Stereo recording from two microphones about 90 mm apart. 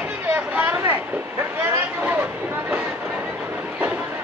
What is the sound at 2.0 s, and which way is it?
Speech, 15° right (ahead or behind).